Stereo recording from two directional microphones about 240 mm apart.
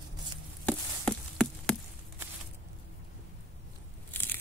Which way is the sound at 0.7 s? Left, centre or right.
Centre.